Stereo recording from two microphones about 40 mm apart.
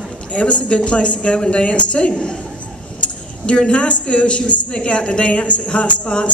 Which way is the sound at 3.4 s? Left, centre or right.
Left.